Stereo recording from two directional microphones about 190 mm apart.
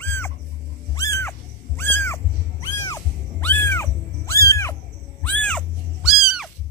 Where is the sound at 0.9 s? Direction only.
15° left (ahead or behind).